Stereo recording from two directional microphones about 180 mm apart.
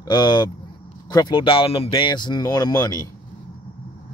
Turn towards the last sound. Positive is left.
turn(degrees=20)  # may be behind; listen again after turning